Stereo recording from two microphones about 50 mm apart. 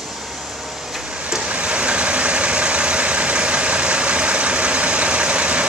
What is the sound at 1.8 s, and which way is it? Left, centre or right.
Vehicle, right.